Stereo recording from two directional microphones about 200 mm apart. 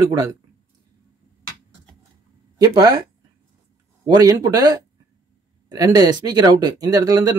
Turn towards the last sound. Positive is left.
turn(degrees=-15)  # may be behind; listen again after turning